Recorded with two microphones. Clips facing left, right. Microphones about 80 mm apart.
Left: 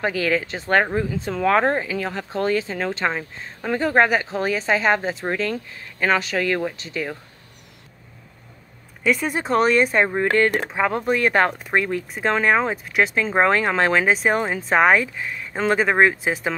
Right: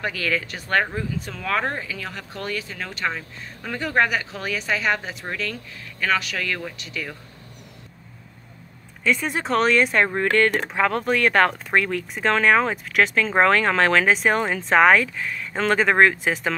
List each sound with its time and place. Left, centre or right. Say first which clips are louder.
0.0 s speech: left 4 dB; left
9.0 s speech: left 2 dB; centre
10.2 s speech: even; centre
10.5 s speech: even; centre